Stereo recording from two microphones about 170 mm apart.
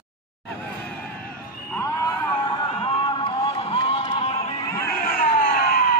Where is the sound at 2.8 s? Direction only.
30° left (ahead or behind).